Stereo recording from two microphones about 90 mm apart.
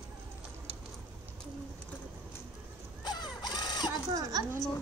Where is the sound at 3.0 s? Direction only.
55° left (ahead or behind).